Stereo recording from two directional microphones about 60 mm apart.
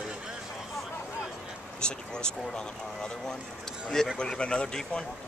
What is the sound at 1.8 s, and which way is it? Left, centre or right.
Speech, centre.